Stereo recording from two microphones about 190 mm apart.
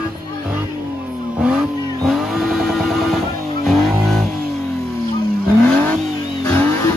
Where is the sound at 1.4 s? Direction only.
5° right (ahead or behind).